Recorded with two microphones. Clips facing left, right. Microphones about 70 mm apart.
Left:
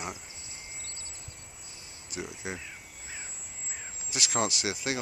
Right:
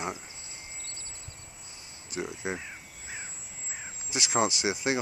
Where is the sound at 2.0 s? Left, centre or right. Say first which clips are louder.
Right 4 dB; right.